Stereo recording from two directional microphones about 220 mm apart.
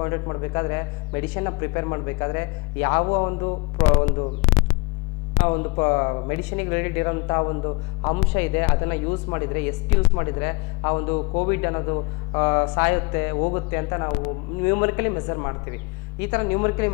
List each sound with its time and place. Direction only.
0.0 s speech: 15° left (ahead or behind)
3.1 s a sound: 20° left (ahead or behind)
3.8 s speech: 10° left (ahead or behind)
4.5 s hum: 10° left (ahead or behind)
5.4 s speech: 15° left (ahead or behind)